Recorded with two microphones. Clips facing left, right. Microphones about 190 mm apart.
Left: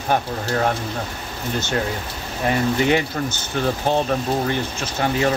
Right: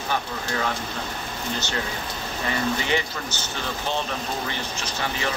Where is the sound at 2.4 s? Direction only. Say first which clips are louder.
Left 8 dB; 55° left (ahead or behind).